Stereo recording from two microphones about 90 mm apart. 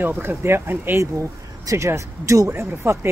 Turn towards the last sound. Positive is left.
turn(degrees=-25)  # may be behind; listen again after turning